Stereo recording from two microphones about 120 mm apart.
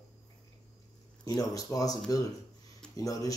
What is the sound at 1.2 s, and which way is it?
Speech, 30° left (ahead or behind).